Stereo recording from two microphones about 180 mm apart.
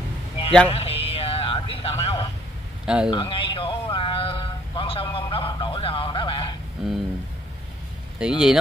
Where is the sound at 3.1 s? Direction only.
30° left (ahead or behind).